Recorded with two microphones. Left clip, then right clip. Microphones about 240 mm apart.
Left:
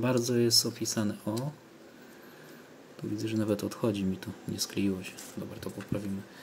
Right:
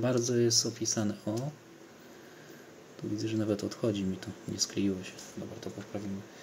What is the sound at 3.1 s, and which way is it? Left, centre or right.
Speech, centre.